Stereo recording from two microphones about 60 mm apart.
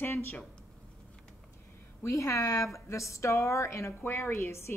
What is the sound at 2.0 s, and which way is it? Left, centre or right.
Speech, left.